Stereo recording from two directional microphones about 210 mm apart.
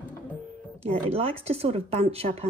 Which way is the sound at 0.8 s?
30° right (ahead or behind).